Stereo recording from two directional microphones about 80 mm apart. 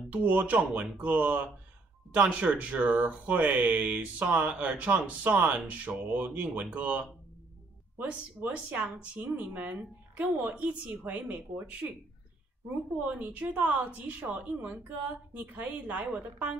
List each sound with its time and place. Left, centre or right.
0.1 s a woman's voice: centre
8.0 s speech: right
13.0 s a woman's voice: centre